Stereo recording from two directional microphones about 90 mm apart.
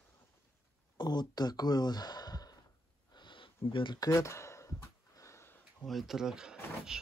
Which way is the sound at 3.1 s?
65° left (ahead or behind).